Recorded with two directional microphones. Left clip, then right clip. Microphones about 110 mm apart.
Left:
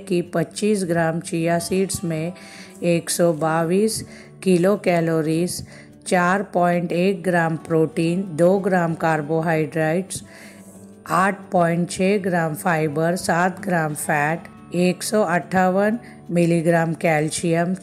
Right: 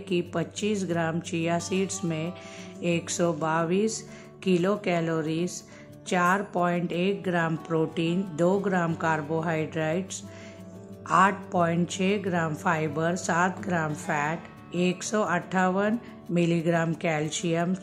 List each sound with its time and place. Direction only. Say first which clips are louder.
0.1 s a woman's voice: left 7 dB; 40° left (ahead or behind)
4.5 s a woman's voice: left 8 dB; 45° left (ahead or behind)
11.1 s a woman's voice: left 2 dB; 35° left (ahead or behind)